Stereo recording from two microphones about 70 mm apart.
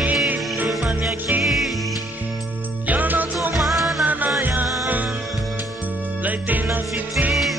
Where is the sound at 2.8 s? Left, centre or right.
Right.